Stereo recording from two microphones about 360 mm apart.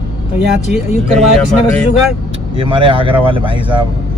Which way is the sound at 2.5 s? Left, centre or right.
Centre.